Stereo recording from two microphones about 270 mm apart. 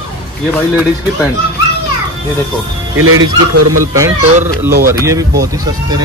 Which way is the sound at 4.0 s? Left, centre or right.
Centre.